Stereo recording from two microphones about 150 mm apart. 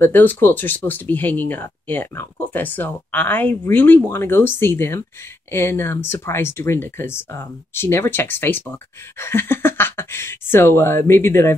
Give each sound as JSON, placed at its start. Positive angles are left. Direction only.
{"t": 0.0, "sound": "speech", "side_deg": 15}